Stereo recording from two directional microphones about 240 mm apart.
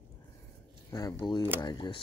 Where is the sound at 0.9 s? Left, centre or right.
Centre.